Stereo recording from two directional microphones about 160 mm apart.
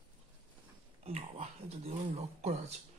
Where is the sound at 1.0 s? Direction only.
40° right (ahead or behind).